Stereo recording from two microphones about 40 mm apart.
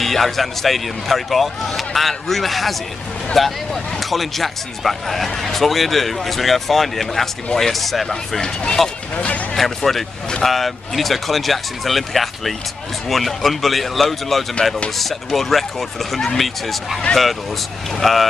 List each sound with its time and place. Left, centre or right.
0.0 s speech: centre
9.1 s speech: left
9.8 s speech: centre